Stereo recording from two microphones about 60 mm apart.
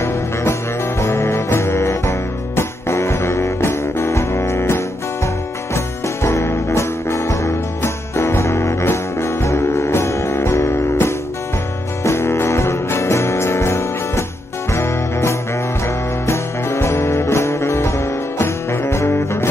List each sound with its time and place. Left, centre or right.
0.0 s music: left